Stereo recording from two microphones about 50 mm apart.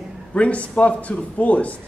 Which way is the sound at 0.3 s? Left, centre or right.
Left.